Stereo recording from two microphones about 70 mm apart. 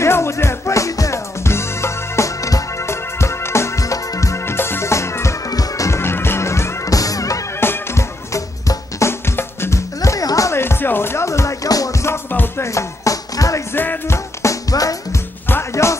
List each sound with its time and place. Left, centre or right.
0.0 s music: left
4.5 s music: left
5.5 s music: left
5.9 s music: left
6.9 s music: left
7.6 s music: left
8.3 s music: left
10.5 s music: left
12.1 s music: left
12.6 s music: left
13.7 s music: left
15.7 s music: left